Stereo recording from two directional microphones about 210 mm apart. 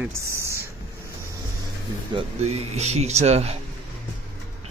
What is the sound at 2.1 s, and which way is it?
Speech, 30° right (ahead or behind).